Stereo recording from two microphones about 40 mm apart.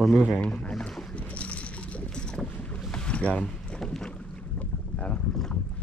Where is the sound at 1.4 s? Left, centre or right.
Left.